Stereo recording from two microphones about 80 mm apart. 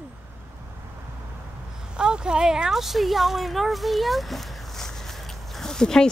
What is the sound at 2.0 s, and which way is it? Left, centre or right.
Speech, centre.